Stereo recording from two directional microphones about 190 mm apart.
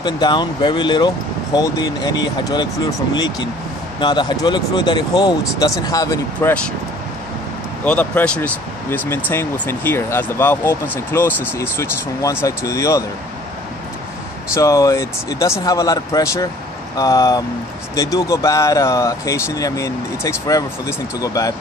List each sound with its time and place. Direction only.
0.0 s speech: 20° left (ahead or behind)
7.8 s speech: 5° left (ahead or behind)
14.5 s speech: 15° left (ahead or behind)